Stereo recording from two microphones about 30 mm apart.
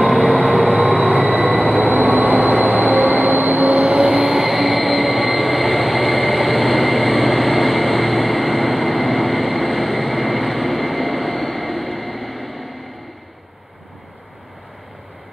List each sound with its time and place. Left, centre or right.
0.2 s vehicle: left
1.0 s train: left
1.9 s train: right
3.7 s vehicle: right
4.1 s train: centre